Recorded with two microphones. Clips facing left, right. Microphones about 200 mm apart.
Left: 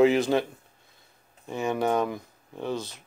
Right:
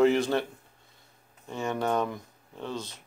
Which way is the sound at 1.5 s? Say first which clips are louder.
Left 3 dB; 10° left (ahead or behind).